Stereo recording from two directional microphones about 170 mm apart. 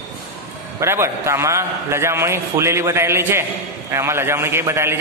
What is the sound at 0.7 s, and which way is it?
A man's voice, 15° right (ahead or behind).